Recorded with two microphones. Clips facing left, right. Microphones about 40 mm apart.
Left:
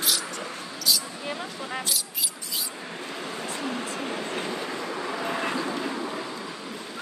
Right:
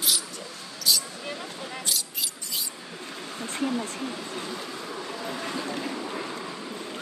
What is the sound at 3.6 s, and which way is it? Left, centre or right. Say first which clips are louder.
Vehicle: right 4 dB; left.